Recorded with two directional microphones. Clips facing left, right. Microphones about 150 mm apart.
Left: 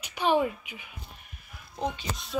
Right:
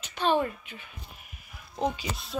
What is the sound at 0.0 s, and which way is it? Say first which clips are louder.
Speech: left 1 dB; 10° left (ahead or behind).